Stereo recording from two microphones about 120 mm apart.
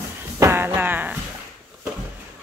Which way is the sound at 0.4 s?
20° right (ahead or behind).